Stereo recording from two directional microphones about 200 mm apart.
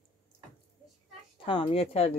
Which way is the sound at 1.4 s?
30° left (ahead or behind).